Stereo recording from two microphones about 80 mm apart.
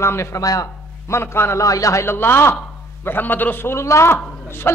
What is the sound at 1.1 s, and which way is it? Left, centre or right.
A man's voice, left.